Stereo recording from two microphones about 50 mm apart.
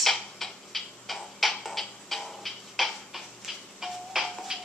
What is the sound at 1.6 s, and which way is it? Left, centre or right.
Music, centre.